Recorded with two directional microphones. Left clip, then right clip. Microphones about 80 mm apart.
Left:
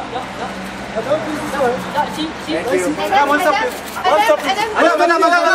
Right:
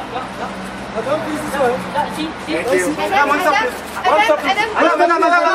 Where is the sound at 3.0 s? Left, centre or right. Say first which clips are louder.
Left 3 dB; left.